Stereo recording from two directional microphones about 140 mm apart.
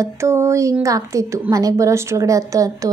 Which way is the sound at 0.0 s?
20° right (ahead or behind).